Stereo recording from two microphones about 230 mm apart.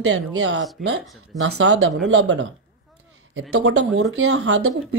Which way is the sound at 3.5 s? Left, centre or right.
Right.